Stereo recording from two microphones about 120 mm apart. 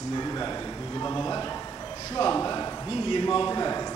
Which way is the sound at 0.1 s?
35° left (ahead or behind).